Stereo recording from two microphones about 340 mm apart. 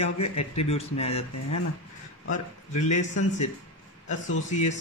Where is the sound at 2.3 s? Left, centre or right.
Left.